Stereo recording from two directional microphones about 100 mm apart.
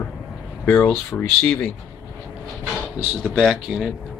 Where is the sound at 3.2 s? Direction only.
5° right (ahead or behind).